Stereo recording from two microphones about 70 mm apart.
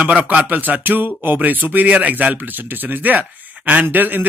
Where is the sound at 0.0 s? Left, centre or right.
Centre.